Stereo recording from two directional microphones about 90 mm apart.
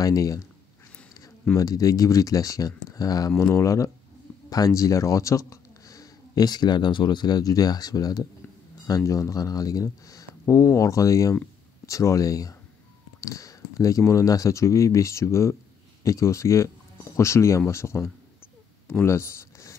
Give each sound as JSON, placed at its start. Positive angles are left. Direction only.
{"t": 0.0, "sound": "speech", "side_deg": 40}
{"t": 1.6, "sound": "speech", "side_deg": 40}
{"t": 18.9, "sound": "a sound", "side_deg": 30}